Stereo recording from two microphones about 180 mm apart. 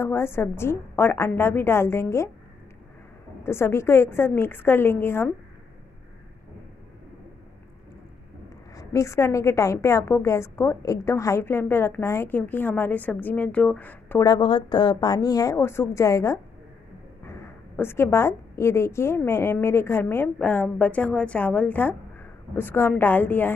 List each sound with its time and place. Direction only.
0.0 s a woman's voice: 15° left (ahead or behind)
3.4 s a woman's voice: 15° left (ahead or behind)
8.7 s a woman's voice: 15° left (ahead or behind)
14.2 s a woman's voice: 25° left (ahead or behind); by 23.5 s 10° left (ahead or behind)